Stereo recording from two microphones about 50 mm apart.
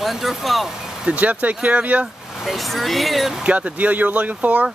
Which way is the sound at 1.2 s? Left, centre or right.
Right.